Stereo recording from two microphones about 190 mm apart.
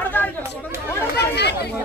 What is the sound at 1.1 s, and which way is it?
Speech, 60° left (ahead or behind).